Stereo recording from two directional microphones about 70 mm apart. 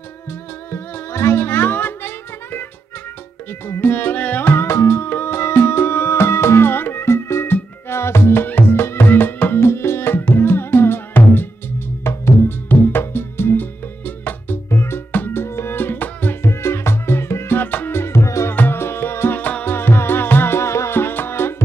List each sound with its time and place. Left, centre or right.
0.3 s music: left
3.6 s music: left
16.4 s music: left
18.5 s music: left